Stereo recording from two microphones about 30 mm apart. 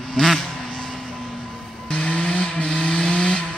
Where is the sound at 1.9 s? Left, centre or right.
Left.